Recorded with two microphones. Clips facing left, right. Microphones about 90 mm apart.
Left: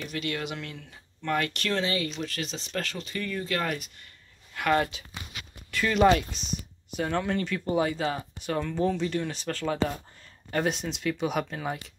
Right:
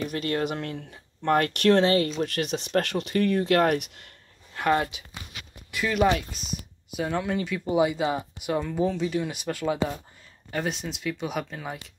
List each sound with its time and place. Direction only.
0.0 s speech: 45° right (ahead or behind); by 4.1 s 70° right (ahead or behind)
4.6 s speech: 30° right (ahead or behind)
4.9 s speech: 15° right (ahead or behind)
5.9 s speech: 5° right (ahead or behind)
10.5 s speech: centre (ahead or behind)